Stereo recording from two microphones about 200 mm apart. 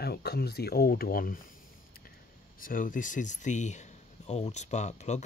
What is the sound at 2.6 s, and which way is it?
Speech, 45° left (ahead or behind).